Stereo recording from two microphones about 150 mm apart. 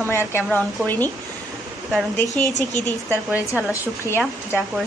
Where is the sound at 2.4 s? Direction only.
10° left (ahead or behind).